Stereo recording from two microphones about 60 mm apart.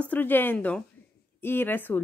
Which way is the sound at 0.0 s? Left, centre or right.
Left.